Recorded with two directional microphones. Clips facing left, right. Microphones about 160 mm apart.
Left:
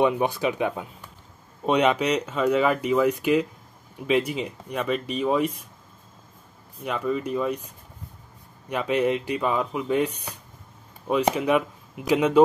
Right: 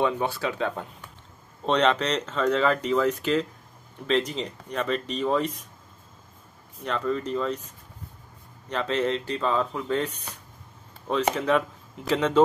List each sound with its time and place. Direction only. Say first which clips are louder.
0.0 s speech: left 4 dB; 15° left (ahead or behind)
6.8 s speech: left 1 dB; 10° left (ahead or behind)